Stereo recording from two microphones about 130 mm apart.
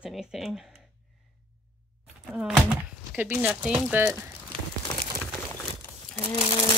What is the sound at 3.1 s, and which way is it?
Speech, 10° right (ahead or behind).